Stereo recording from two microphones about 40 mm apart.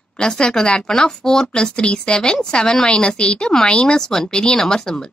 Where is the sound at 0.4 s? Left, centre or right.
Centre.